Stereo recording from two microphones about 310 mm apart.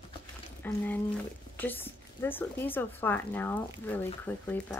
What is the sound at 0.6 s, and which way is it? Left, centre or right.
Speech, centre.